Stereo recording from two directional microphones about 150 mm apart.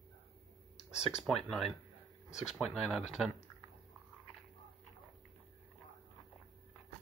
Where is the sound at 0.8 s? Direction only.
45° left (ahead or behind).